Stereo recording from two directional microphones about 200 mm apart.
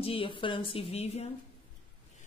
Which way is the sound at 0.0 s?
25° left (ahead or behind).